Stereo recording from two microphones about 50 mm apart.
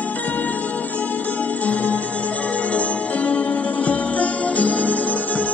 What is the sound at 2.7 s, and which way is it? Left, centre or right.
Music, left.